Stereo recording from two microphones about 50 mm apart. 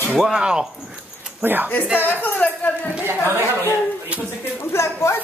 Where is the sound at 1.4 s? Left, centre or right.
Right.